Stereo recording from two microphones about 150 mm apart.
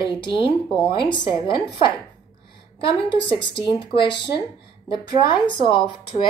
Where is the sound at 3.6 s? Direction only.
35° left (ahead or behind).